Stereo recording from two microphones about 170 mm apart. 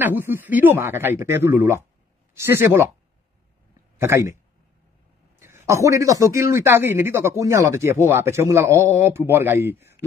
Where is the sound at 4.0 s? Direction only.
15° right (ahead or behind).